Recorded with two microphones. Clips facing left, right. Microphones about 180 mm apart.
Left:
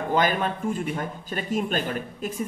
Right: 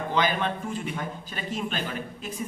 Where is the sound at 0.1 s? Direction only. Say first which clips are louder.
Left 3 dB; 45° left (ahead or behind).